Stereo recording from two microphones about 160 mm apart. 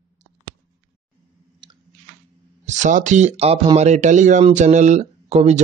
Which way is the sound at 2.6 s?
50° right (ahead or behind).